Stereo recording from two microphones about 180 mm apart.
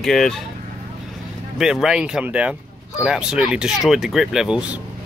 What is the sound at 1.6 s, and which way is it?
Speech, 5° right (ahead or behind).